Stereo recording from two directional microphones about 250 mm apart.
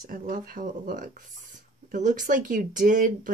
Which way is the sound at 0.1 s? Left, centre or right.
Right.